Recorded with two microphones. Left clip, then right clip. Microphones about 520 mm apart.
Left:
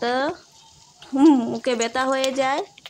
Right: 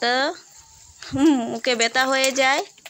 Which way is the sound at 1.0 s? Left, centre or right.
Left.